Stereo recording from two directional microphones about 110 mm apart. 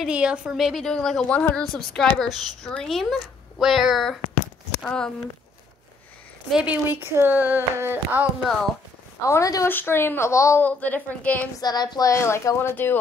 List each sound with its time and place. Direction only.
0.0 s a woman's voice: 10° right (ahead or behind); by 5.1 s 10° left (ahead or behind)
6.5 s speech: 10° right (ahead or behind)
9.2 s a woman's voice: 30° left (ahead or behind)
9.7 s a woman's voice: 20° left (ahead or behind)
10.6 s a woman's voice: 15° left (ahead or behind)
11.6 s a woman's voice: 40° left (ahead or behind); by 13.0 s 20° left (ahead or behind)